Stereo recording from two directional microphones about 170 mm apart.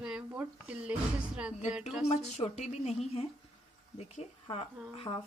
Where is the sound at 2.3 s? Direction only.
40° left (ahead or behind).